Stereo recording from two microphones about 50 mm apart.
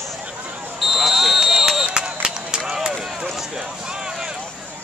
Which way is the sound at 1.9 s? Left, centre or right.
Centre.